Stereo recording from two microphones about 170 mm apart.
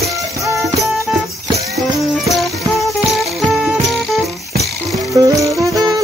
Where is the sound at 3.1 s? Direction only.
Centre (ahead or behind).